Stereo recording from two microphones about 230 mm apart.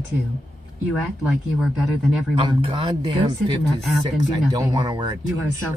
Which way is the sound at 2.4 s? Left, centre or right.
Right.